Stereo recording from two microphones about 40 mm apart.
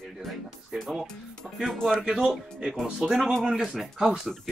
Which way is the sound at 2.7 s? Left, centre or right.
Centre.